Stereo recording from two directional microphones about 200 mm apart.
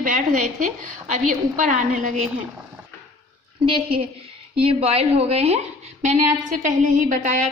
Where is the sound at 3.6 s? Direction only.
25° right (ahead or behind).